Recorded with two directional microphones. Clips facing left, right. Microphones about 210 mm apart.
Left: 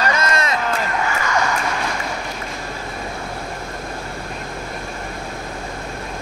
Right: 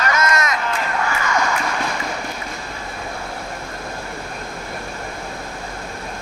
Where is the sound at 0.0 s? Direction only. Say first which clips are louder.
Even; 30° left (ahead or behind).